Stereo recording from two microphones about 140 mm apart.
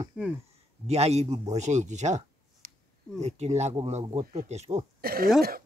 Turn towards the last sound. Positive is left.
turn(degrees=-90)